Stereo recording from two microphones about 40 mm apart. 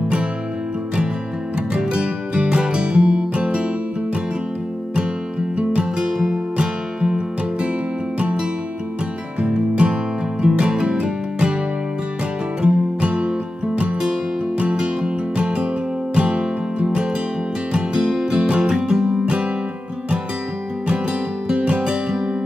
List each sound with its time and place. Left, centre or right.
1.7 s music: centre
5.6 s music: right
8.2 s music: right
12.6 s music: right
14.6 s music: right
21.5 s music: right